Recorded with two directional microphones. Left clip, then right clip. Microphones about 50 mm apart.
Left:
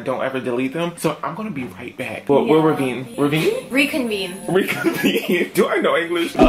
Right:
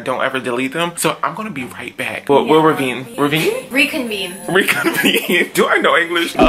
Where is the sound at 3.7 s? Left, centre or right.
Left.